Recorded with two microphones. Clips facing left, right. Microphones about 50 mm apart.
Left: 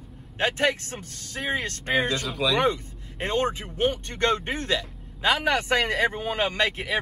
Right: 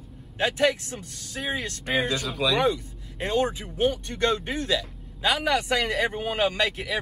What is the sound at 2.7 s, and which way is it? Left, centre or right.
Speech, left.